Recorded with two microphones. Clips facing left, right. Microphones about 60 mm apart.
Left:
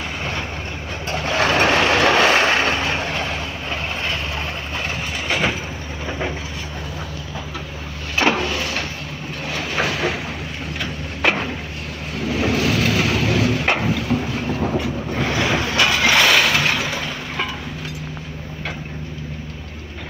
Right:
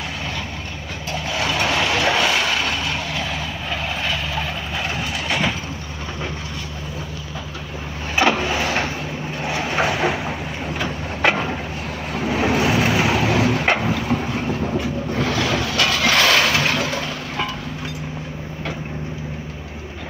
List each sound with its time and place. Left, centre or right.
1.1 s vehicle: left
5.3 s vehicle: centre
8.2 s printer: centre
8.6 s vehicle: right
9.5 s vehicle: centre
12.2 s a sound: right; by 14.1 s centre
14.2 s train: centre
15.2 s vehicle: left; by 17.5 s centre